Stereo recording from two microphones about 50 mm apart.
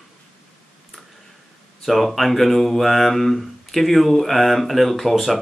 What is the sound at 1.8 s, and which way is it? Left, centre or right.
Speech, centre.